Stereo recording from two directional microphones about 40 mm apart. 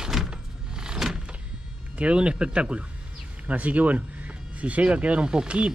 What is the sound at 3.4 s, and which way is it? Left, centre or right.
Speech, right.